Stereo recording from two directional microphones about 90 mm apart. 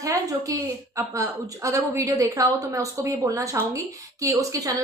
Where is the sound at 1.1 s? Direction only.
35° right (ahead or behind).